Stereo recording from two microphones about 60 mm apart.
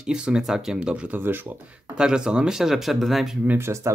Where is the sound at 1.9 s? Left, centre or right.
Centre.